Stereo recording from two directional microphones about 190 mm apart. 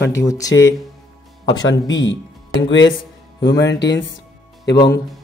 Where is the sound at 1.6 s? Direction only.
75° left (ahead or behind).